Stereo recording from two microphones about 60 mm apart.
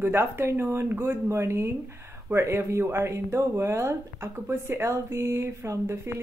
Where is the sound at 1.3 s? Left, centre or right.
Right.